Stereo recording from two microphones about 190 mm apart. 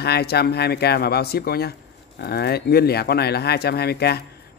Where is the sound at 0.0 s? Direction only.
60° left (ahead or behind).